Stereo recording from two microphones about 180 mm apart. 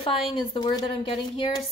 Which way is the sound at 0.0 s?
30° left (ahead or behind).